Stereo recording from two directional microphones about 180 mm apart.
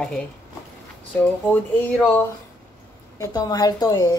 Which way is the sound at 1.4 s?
10° left (ahead or behind).